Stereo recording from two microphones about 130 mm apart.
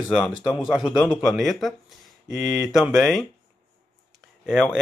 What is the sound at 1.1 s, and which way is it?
Speech, centre (ahead or behind).